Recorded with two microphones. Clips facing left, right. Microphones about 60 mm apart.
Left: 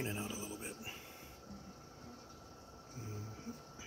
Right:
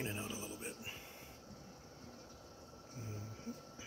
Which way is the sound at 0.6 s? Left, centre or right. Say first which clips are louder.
Even; centre.